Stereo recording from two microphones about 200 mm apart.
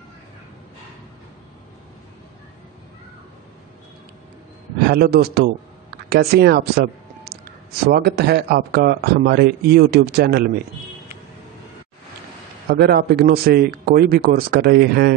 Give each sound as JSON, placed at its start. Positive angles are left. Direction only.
{"t": 4.8, "sound": "speech", "side_deg": -50}
{"t": 12.6, "sound": "speech", "side_deg": -50}